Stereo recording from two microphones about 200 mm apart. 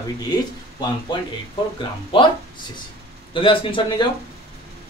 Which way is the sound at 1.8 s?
25° left (ahead or behind).